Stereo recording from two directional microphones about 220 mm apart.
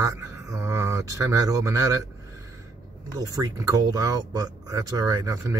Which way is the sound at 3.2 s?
15° right (ahead or behind).